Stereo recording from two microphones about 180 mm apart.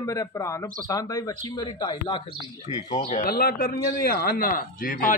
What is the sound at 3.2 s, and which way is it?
A man's voice, 55° left (ahead or behind).